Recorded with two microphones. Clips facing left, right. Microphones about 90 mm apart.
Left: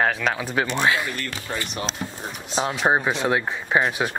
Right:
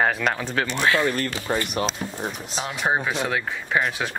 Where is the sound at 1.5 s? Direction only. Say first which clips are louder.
Right 5 dB; 20° right (ahead or behind).